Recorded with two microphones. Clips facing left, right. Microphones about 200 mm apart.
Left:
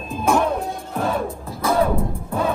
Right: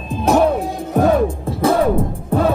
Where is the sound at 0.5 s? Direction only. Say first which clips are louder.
Right 7 dB; 45° right (ahead or behind).